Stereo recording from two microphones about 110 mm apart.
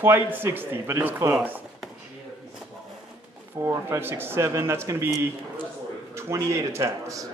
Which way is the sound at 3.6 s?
25° right (ahead or behind).